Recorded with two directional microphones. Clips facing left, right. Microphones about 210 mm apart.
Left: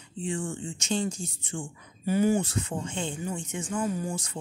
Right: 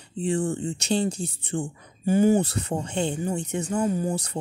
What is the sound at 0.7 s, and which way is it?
Speech, 65° right (ahead or behind).